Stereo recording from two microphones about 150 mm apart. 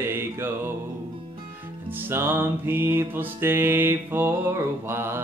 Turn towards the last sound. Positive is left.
turn(degrees=-15)  # may be behind; listen again after turning